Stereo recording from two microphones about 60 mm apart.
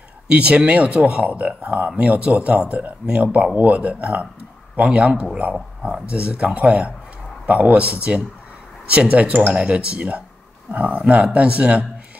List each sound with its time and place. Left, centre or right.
0.3 s speech: right